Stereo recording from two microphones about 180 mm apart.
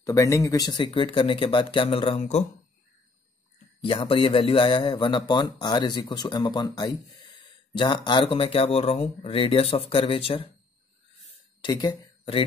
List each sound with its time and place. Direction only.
0.0 s speech: 15° left (ahead or behind); by 2.4 s 35° left (ahead or behind)
3.8 s speech: 30° left (ahead or behind)
11.6 s speech: 25° left (ahead or behind)